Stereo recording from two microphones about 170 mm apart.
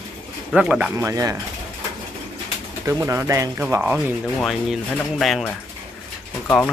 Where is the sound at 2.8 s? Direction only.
15° right (ahead or behind); by 5.5 s centre (ahead or behind).